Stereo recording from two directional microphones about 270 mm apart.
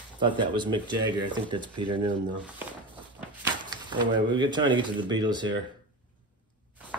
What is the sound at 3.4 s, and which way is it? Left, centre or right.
Speech, centre.